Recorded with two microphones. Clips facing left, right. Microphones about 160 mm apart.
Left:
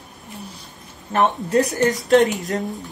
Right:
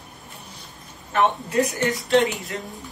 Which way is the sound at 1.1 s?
40° left (ahead or behind).